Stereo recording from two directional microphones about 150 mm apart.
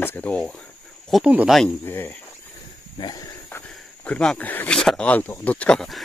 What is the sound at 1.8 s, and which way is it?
Speech, 15° left (ahead or behind).